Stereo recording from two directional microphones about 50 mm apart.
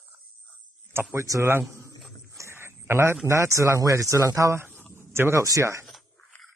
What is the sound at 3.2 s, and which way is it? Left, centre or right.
Speech, right.